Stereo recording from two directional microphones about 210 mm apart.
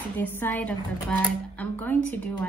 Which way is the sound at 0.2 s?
10° left (ahead or behind).